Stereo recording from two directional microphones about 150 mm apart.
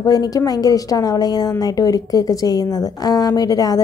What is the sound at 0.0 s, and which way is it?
A woman's voice, 25° left (ahead or behind).